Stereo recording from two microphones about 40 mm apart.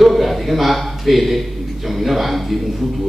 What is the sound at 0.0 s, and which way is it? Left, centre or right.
A man's voice, centre.